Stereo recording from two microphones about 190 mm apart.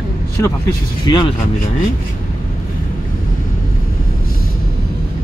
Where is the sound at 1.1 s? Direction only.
20° left (ahead or behind).